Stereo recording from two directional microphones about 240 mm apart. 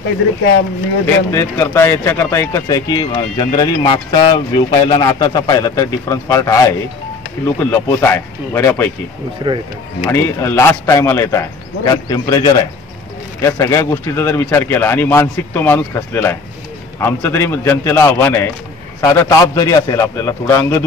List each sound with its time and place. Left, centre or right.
1.3 s speech: centre
9.4 s speech: centre
10.0 s speech: centre